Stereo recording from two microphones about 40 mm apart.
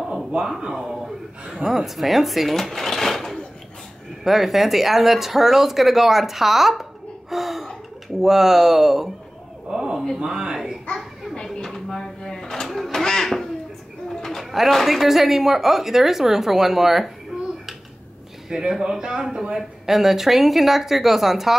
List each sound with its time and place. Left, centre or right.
0.3 s a woman's voice: right
0.7 s a woman's voice: centre
1.7 s a woman's voice: centre
9.7 s a sound: centre
10.1 s a woman's voice: centre
11.6 s drawer open or close: centre
12.6 s quack: centre
12.9 s crow: centre
14.0 s bird: centre
14.4 s music: centre
14.9 s a woman's voice: centre
18.5 s a woman's voice: centre